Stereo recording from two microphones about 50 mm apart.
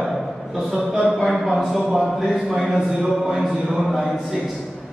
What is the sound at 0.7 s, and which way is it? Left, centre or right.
Speech, right.